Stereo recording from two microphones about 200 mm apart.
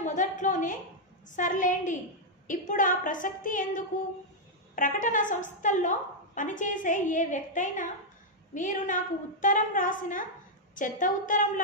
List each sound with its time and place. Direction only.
0.0 s a woman's voice: 40° left (ahead or behind)